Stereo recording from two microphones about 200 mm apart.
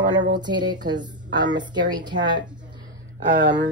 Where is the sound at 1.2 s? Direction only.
60° right (ahead or behind).